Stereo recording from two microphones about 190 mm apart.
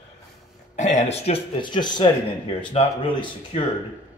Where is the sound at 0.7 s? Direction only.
40° left (ahead or behind).